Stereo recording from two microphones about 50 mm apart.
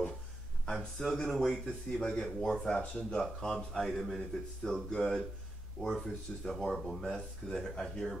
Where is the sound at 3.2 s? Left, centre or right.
Centre.